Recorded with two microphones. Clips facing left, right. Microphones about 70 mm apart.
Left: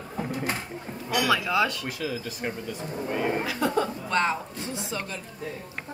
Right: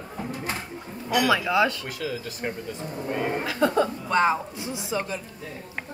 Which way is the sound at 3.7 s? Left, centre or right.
Centre.